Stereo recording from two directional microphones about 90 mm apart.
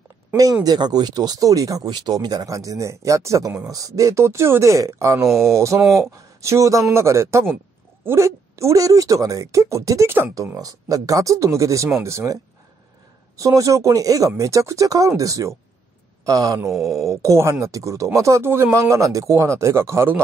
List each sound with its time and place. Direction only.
0.7 s speech: 50° right (ahead or behind)
5.2 s speech: centre (ahead or behind)
5.9 s speech: 35° right (ahead or behind)
13.4 s speech: 40° right (ahead or behind)
16.7 s speech: centre (ahead or behind)
17.0 s speech: 35° right (ahead or behind)